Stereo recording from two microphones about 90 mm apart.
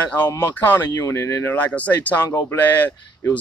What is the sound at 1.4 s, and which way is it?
Speech, 20° left (ahead or behind).